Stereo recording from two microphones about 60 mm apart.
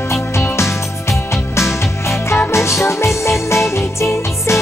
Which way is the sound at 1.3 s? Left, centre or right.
Left.